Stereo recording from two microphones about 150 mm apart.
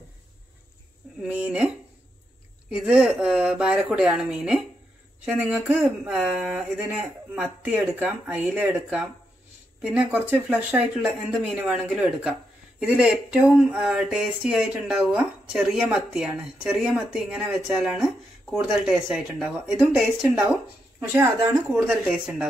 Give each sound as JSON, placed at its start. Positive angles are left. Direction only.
{"t": 1.2, "sound": "speech", "side_deg": -10}
{"t": 2.7, "sound": "speech", "side_deg": -5}
{"t": 21.1, "sound": "speech", "side_deg": -15}
{"t": 22.0, "sound": "speech", "side_deg": -5}